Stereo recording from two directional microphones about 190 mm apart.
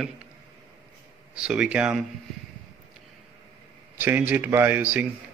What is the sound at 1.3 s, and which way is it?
Speech, 5° right (ahead or behind).